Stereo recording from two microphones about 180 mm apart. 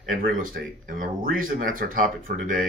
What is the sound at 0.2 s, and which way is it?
Speech, 50° right (ahead or behind).